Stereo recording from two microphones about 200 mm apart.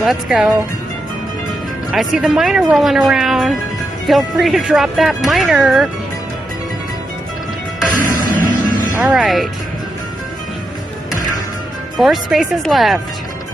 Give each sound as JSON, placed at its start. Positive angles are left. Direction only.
{"t": 0.0, "sound": "speech", "side_deg": 0}
{"t": 1.9, "sound": "speech", "side_deg": 0}
{"t": 8.0, "sound": "music", "side_deg": -40}
{"t": 9.0, "sound": "speech", "side_deg": 0}
{"t": 12.0, "sound": "speech", "side_deg": 0}